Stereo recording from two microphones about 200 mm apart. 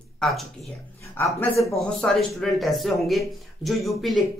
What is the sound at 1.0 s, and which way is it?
Speech, 15° left (ahead or behind).